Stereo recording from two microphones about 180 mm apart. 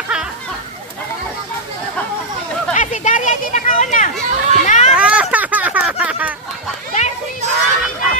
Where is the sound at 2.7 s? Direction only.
40° left (ahead or behind).